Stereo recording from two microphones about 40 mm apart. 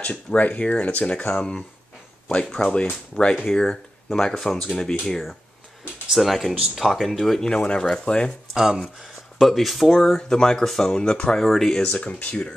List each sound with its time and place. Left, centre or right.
0.0 s speech: left
1.1 s speech: left
3.4 s speech: centre
7.4 s speech: left
8.5 s speech: centre
9.4 s speech: centre
10.6 s speech: centre
10.9 s speech: left
11.3 s speech: centre
11.8 s speech: left